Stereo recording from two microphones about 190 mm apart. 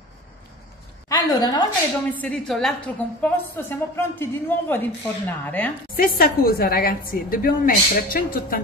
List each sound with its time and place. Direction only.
1.0 s a woman's voice: 20° left (ahead or behind)
2.0 s a woman's voice: 5° left (ahead or behind)
5.9 s a woman's voice: 50° left (ahead or behind)